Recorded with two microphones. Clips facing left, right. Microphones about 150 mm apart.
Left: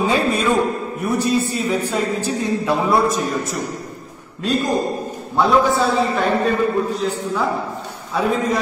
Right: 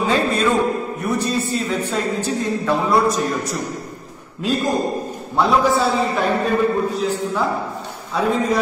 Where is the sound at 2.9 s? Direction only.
Centre (ahead or behind).